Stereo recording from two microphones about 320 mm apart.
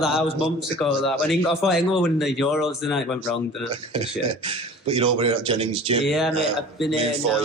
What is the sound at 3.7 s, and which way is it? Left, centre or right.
A man's voice, centre.